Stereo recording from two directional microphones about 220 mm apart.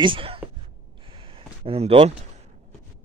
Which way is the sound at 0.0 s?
25° right (ahead or behind).